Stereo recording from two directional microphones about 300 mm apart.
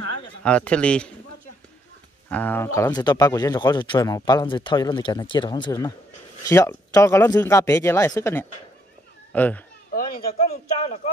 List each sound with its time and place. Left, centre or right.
0.4 s speech: centre
2.2 s speech: centre
9.9 s a man's voice: left